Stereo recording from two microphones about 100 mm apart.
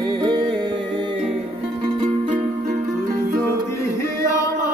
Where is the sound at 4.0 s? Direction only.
30° left (ahead or behind).